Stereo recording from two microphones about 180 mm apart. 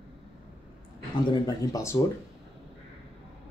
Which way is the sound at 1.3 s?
20° left (ahead or behind).